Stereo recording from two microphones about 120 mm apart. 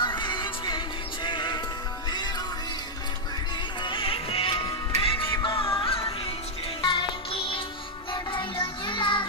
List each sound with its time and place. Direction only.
0.0 s music: 40° left (ahead or behind)
3.8 s music: 45° left (ahead or behind)
8.1 s child singing: 45° left (ahead or behind)